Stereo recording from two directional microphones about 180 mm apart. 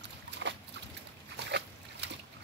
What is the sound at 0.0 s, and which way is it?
Boat, 80° right.